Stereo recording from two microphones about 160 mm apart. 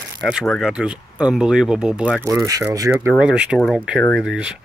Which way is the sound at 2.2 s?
15° right (ahead or behind).